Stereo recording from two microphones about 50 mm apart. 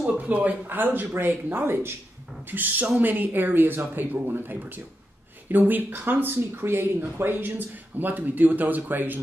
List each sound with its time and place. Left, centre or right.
0.3 s speech: right
0.7 s speech: right
2.5 s speech: right